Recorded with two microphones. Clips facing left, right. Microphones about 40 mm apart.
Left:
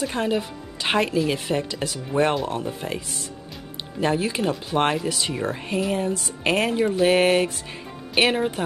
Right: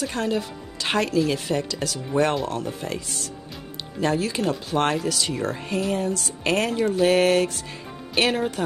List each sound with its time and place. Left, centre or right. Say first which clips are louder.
0.0 s speech: left 1 dB; centre
4.0 s speech: left 1 dB; left